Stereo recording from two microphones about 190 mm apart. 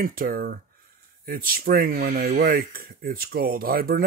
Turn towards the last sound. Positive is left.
turn(degrees=-50)  # may be behind; listen again after turning